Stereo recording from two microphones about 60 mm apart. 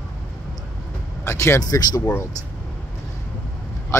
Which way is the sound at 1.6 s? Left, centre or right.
Left.